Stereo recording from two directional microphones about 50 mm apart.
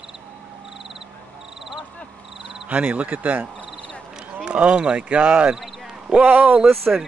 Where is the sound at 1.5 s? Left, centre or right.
Centre.